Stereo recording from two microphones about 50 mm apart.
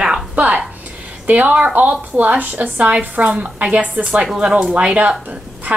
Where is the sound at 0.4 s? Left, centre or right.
Right.